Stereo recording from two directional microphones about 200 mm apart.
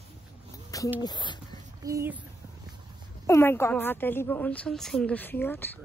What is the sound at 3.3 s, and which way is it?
A woman's voice, 15° left (ahead or behind).